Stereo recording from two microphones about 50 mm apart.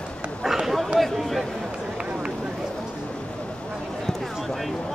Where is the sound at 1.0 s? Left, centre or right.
Centre.